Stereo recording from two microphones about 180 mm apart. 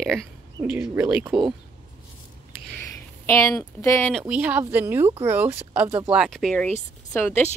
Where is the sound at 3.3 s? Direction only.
15° left (ahead or behind).